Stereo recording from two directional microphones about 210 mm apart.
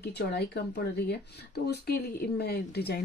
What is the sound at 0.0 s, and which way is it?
Speech, 50° left (ahead or behind).